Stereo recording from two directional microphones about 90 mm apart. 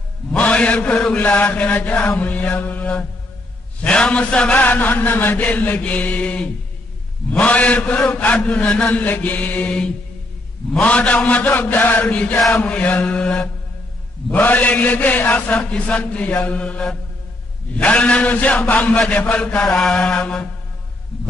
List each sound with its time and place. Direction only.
0.3 s mantra: 15° left (ahead or behind)